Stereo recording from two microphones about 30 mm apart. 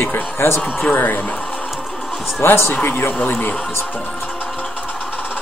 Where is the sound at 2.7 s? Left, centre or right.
Left.